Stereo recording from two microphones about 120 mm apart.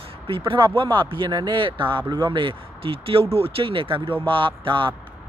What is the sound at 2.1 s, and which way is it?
A man's voice, 35° right (ahead or behind).